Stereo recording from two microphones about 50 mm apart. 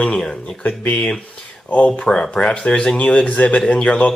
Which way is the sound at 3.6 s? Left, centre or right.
Centre.